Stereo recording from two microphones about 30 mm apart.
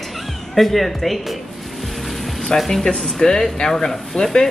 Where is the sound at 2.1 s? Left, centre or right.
Centre.